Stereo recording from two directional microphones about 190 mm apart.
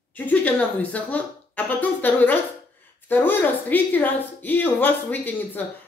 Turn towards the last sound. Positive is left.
turn(degrees=10)  # may be behind; listen again after turning